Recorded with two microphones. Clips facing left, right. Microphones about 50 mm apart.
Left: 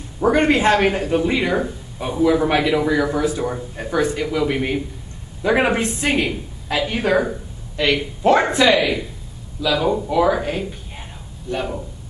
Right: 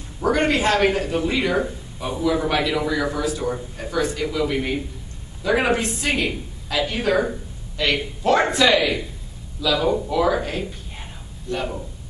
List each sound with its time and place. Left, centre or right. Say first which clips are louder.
0.2 s a man's voice: left 4 dB; left